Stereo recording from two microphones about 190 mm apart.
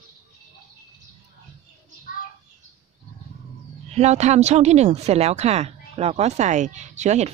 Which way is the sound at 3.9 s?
35° right (ahead or behind).